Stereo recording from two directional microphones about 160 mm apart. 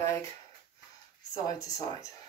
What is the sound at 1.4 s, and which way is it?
Speech, 20° left (ahead or behind).